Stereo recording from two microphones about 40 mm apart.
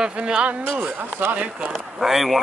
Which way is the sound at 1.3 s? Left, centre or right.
Right.